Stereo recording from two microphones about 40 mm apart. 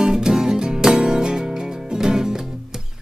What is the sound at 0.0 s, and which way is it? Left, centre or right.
Music, centre.